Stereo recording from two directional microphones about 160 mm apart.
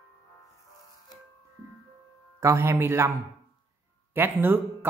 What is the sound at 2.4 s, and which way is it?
Speech, 20° right (ahead or behind).